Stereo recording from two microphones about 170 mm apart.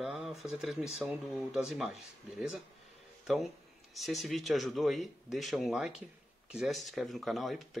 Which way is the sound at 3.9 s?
Centre (ahead or behind).